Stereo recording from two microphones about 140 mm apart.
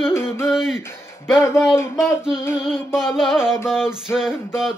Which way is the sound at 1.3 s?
15° left (ahead or behind).